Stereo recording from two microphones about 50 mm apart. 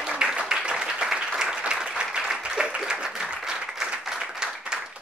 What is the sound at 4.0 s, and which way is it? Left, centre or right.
Applause, centre.